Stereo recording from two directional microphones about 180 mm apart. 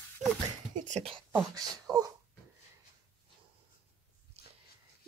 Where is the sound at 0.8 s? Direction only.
40° right (ahead or behind).